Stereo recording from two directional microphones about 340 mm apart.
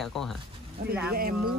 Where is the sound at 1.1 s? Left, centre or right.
Right.